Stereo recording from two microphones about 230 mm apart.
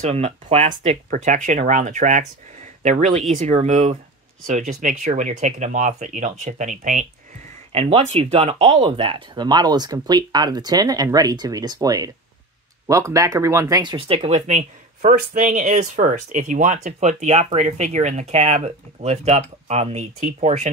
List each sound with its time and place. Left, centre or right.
0.0 s speech: right